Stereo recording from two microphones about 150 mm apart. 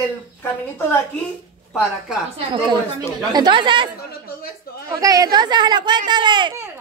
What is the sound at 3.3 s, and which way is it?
Speech, 30° right (ahead or behind).